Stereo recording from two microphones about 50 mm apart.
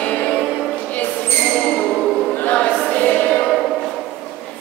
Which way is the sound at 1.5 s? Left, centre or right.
Centre.